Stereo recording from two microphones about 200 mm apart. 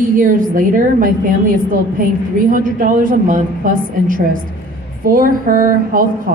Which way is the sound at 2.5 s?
40° right (ahead or behind).